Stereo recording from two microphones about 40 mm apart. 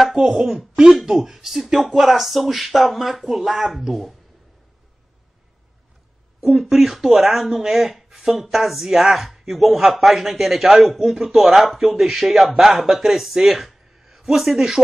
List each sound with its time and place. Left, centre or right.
0.1 s speech: centre
6.4 s speech: centre